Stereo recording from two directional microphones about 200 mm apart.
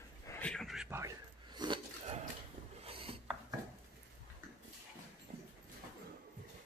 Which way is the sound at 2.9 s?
30° right (ahead or behind).